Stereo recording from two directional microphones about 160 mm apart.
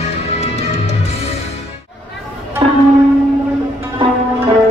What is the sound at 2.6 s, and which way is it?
Music, 30° right (ahead or behind).